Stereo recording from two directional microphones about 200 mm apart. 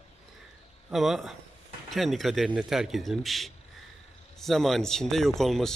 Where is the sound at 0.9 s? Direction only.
Centre (ahead or behind).